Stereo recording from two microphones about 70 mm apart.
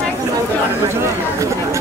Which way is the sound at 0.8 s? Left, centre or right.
Right.